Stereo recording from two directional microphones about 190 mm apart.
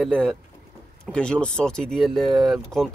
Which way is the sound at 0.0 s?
5° left (ahead or behind).